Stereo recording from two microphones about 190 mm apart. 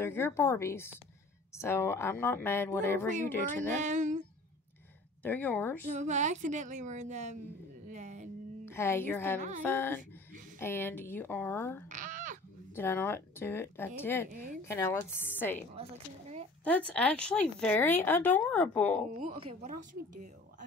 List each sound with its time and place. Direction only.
0.0 s speech: 10° left (ahead or behind)
3.8 s a woman's voice: 40° right (ahead or behind)
5.2 s speech: 10° left (ahead or behind)
5.9 s a woman's voice: 40° right (ahead or behind)
8.6 s speech: 15° left (ahead or behind)
11.9 s a sound: 40° right (ahead or behind)
12.7 s speech: 10° left (ahead or behind)
15.7 s speech: 35° right (ahead or behind)
16.6 s speech: 5° left (ahead or behind)
19.4 s a woman's voice: 40° right (ahead or behind)